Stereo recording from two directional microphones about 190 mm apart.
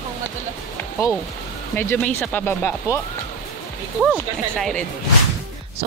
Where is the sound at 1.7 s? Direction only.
10° left (ahead or behind).